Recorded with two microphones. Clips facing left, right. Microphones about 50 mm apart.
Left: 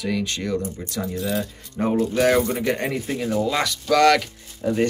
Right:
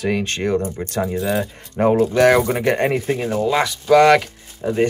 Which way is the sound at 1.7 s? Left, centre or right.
Right.